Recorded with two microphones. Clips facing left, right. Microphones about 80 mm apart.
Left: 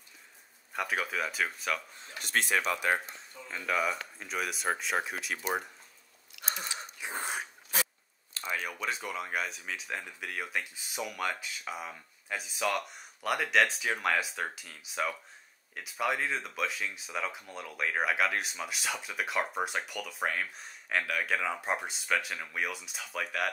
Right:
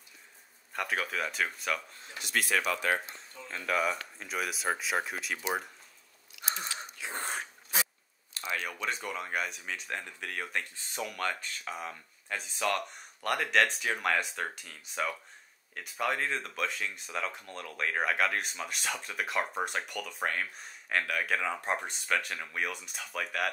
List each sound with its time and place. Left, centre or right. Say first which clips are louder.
0.7 s speech: even; centre
2.1 s speech: left 1 dB; left
2.7 s speech: left 1 dB; centre
3.2 s speech: even; centre
7.1 s dog: left 1 dB; centre
8.5 s speech: even; centre